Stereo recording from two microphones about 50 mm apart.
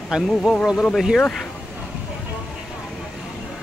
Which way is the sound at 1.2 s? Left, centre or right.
Centre.